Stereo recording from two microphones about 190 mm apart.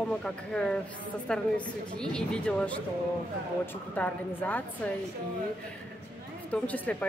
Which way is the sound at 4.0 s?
10° left (ahead or behind).